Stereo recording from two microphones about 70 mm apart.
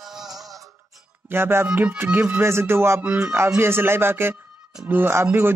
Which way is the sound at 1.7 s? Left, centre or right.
Right.